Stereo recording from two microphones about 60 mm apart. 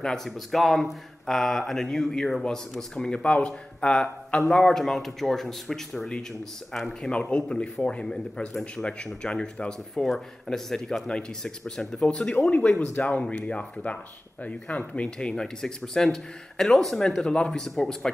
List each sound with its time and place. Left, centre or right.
0.0 s a man's voice: centre
7.1 s a man's voice: centre
15.0 s a man's voice: centre